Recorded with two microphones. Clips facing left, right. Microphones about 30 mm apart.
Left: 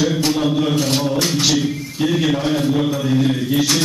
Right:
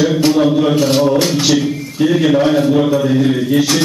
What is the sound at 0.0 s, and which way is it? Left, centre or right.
A man's voice, centre.